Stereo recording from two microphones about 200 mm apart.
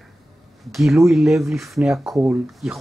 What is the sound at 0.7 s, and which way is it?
Speech, centre (ahead or behind).